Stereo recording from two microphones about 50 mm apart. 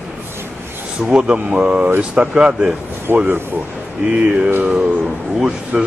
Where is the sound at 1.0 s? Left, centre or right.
Centre.